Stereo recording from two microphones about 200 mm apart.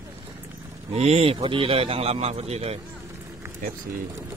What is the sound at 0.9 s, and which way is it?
A man's voice, 30° right (ahead or behind).